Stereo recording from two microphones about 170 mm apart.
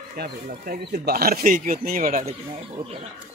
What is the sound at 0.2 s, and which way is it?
Speech, 60° right (ahead or behind).